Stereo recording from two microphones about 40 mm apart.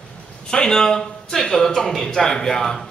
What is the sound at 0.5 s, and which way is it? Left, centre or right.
Speech, centre.